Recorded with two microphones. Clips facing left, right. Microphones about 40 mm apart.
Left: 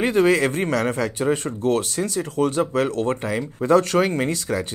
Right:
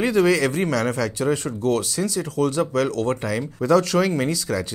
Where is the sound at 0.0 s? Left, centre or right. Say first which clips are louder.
Left 1 dB; left.